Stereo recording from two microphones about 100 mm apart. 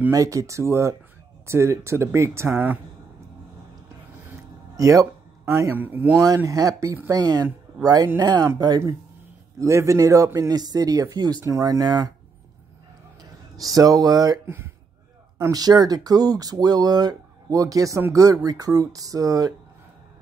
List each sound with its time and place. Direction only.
0.1 s speech: 35° right (ahead or behind)
4.7 s speech: 35° right (ahead or behind)
5.6 s speech: 20° right (ahead or behind)
6.2 s speech: 40° right (ahead or behind)
13.2 s speech: 40° right (ahead or behind)
15.5 s speech: 40° right (ahead or behind)